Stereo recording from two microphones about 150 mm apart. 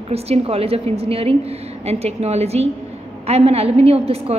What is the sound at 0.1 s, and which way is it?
A woman's voice, 45° right (ahead or behind).